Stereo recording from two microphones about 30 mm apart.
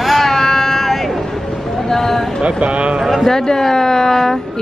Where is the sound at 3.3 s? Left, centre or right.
Left.